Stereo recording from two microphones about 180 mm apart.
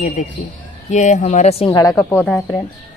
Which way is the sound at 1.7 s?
20° left (ahead or behind).